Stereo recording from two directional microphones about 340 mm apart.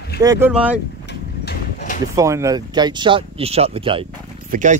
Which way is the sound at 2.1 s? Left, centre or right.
Centre.